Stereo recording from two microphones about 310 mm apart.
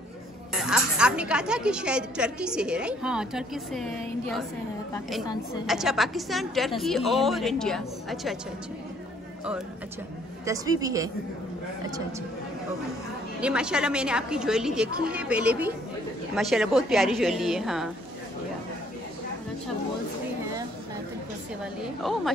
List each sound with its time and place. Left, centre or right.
0.5 s a woman's voice: centre
5.7 s a woman's voice: centre
10.4 s a woman's voice: centre
13.4 s a woman's voice: centre